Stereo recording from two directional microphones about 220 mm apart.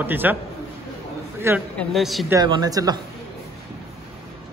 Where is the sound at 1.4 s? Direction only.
10° right (ahead or behind).